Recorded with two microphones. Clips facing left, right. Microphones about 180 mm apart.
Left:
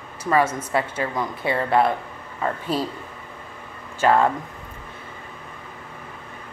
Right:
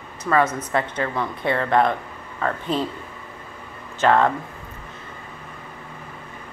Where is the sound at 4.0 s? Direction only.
10° left (ahead or behind).